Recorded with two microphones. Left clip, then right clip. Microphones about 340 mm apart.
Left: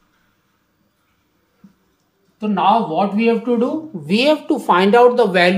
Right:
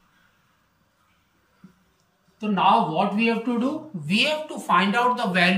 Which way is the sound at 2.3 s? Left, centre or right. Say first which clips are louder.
Left 4 dB; centre.